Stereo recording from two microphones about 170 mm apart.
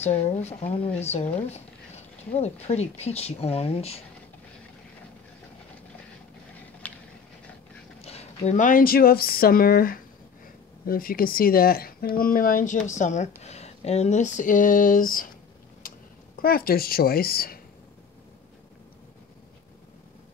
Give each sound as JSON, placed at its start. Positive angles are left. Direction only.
{"t": 0.0, "sound": "speech", "side_deg": 40}
{"t": 2.3, "sound": "speech", "side_deg": 40}
{"t": 6.8, "sound": "a sound", "side_deg": 10}
{"t": 8.0, "sound": "speech", "side_deg": 40}
{"t": 16.3, "sound": "speech", "side_deg": 60}